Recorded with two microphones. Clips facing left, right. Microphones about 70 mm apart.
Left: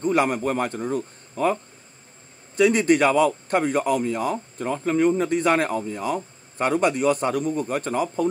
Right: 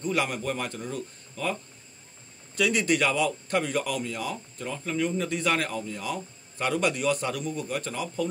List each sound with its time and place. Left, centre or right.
0.0 s speech: left